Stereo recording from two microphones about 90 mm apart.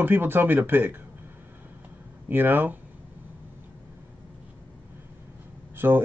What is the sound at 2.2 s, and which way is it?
Speech, 20° right (ahead or behind).